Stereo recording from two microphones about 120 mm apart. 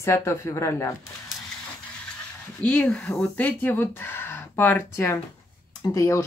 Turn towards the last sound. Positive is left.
turn(degrees=25)  # may be behind; listen again after turning